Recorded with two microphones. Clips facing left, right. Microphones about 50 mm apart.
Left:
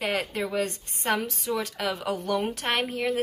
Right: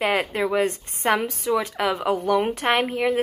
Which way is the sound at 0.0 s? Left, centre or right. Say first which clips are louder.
Right 6 dB; right.